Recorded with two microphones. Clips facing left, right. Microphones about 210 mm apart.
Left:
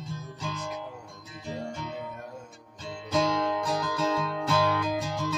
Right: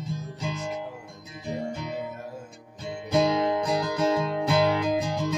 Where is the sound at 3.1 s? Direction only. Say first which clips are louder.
Right 4 dB; 15° right (ahead or behind).